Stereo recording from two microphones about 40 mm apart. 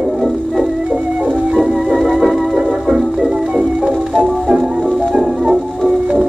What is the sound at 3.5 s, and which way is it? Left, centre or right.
Music, right.